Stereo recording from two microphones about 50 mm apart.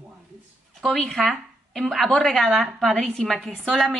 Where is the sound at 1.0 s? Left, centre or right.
Centre.